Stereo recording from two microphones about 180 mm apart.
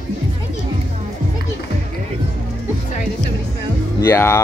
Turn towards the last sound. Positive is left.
turn(degrees=15)  # may be behind; listen again after turning